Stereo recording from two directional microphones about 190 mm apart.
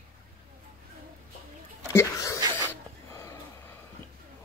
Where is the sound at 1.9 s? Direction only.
15° left (ahead or behind).